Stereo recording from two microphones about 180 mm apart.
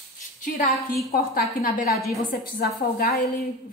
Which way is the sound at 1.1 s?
55° left (ahead or behind).